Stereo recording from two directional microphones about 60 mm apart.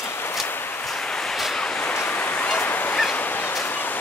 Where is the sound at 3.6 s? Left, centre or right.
Left.